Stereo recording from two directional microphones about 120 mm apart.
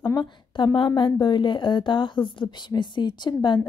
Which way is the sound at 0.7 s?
45° left (ahead or behind).